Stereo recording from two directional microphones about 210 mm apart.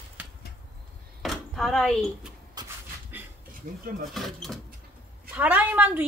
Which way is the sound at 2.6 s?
20° right (ahead or behind).